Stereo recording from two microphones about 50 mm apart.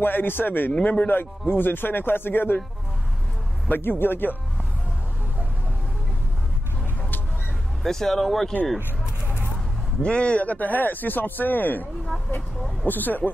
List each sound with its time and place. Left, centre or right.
0.0 s speech: left
3.8 s speech: left
7.8 s speech: centre
10.0 s speech: left